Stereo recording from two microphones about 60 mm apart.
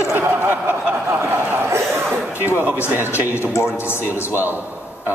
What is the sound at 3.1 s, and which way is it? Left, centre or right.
A man's voice, left.